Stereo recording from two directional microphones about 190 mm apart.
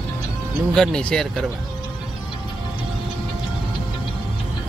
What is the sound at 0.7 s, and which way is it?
Speech, 5° left (ahead or behind).